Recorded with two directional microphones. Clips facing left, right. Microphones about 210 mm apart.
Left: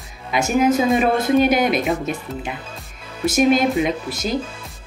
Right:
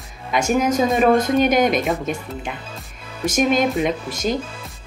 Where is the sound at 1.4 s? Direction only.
45° right (ahead or behind).